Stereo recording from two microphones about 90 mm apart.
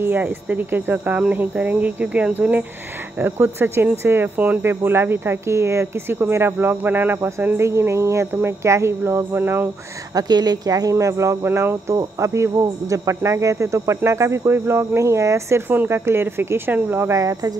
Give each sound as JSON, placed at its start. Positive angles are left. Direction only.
{"t": 0.0, "sound": "speech", "side_deg": -20}
{"t": 10.1, "sound": "speech", "side_deg": -50}
{"t": 17.1, "sound": "speech", "side_deg": -40}